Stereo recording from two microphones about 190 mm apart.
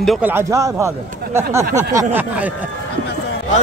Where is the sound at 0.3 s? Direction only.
15° right (ahead or behind).